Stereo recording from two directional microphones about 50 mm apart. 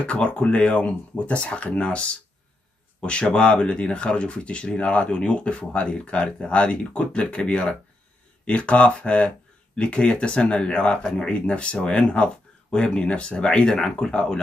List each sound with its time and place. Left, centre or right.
0.0 s speech: left